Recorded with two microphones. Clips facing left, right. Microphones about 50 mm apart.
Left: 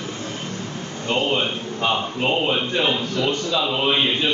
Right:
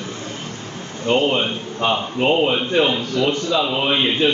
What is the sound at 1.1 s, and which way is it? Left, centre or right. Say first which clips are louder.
A man's voice: right 4 dB; right.